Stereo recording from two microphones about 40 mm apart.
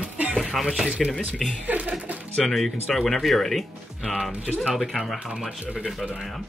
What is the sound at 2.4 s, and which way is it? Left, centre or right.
Speech, centre.